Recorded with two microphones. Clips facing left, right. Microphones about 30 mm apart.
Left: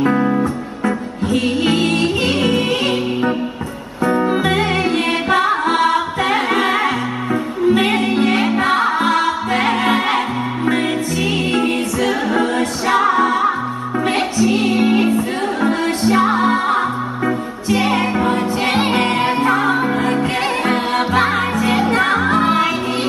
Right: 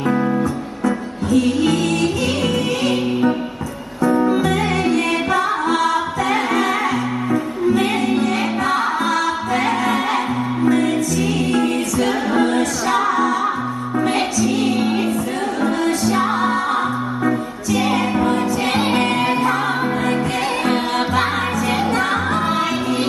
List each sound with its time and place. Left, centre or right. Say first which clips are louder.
0.4 s music: left 1 dB; left
4.3 s music: left 1 dB; left
12.0 s music: even; centre
12.5 s a capella: left 2 dB; left
14.0 s music: left 3 dB; left
20.6 s music: left 2 dB; left